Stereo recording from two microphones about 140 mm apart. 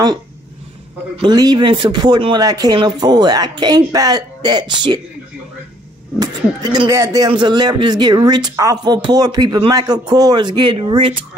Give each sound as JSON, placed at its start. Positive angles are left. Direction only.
{"t": 1.1, "sound": "speech", "side_deg": -30}
{"t": 6.1, "sound": "speech", "side_deg": -30}
{"t": 7.2, "sound": "speech", "side_deg": -35}